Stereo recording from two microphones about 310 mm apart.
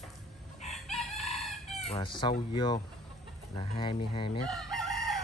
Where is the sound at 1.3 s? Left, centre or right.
Centre.